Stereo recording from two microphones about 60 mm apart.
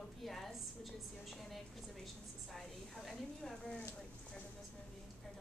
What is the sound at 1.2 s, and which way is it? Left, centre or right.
A woman's voice, centre.